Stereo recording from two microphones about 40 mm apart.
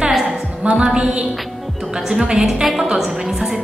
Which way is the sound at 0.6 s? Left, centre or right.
Right.